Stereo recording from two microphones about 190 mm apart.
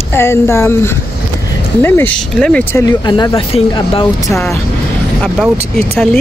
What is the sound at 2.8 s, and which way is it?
Speech, 20° left (ahead or behind).